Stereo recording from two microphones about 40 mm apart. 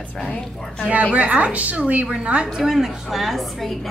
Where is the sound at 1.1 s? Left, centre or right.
Right.